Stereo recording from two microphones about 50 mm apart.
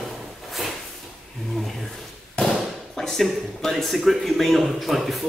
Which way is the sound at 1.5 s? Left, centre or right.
Centre.